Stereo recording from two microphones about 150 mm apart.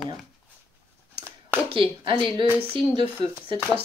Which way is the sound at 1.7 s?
35° right (ahead or behind).